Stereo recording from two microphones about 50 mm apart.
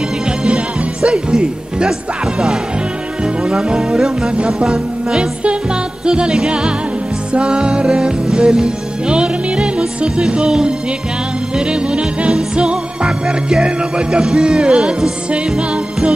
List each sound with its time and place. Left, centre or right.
1.0 s speech: centre
3.4 s speech: centre
7.3 s music: centre